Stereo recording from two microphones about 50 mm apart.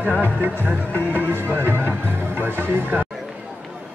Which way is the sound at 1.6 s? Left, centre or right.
Right.